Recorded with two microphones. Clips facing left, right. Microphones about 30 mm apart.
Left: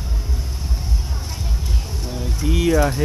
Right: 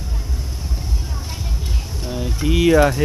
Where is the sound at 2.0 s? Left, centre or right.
Centre.